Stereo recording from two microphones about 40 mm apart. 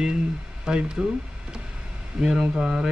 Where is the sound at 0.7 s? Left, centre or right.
Centre.